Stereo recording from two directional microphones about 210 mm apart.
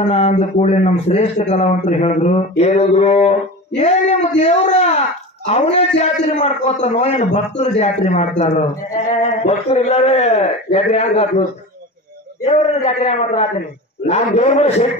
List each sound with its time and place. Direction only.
0.0 s a man's voice: 30° left (ahead or behind)
12.4 s a man's voice: 30° left (ahead or behind)